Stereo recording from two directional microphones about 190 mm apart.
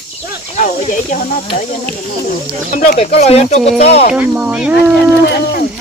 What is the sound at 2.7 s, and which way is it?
Speech, 40° left (ahead or behind).